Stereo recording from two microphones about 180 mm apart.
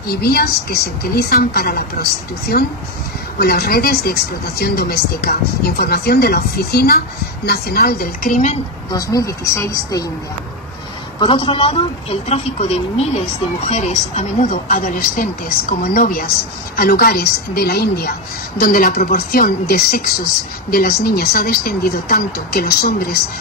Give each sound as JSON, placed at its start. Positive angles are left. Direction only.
{"t": 0.1, "sound": "speech", "side_deg": 60}
{"t": 8.9, "sound": "a woman's voice", "side_deg": 20}
{"t": 11.1, "sound": "a man's voice", "side_deg": 30}